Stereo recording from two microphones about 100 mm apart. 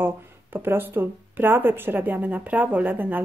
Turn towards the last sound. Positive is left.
turn(degrees=-15)  # may be behind; listen again after turning